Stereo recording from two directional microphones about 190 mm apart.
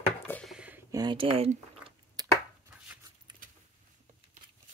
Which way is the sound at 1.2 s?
35° right (ahead or behind).